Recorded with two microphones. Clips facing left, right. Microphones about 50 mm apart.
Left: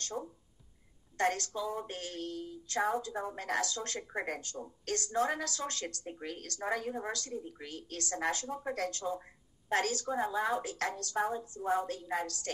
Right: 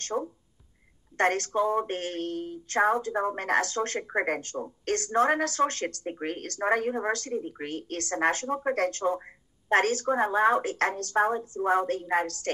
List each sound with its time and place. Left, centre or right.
0.0 s speech: right